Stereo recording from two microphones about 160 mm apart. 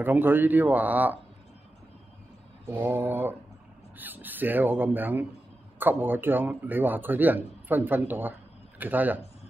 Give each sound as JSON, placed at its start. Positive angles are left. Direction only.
{"t": 0.0, "sound": "speech", "side_deg": -10}
{"t": 2.7, "sound": "speech", "side_deg": -15}